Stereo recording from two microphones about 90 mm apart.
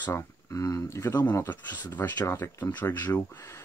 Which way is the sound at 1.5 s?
20° left (ahead or behind).